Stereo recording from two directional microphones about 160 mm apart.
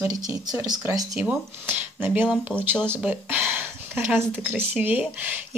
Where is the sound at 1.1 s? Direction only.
10° right (ahead or behind).